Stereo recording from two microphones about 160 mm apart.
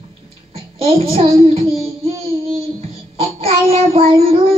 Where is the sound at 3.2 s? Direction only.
35° right (ahead or behind).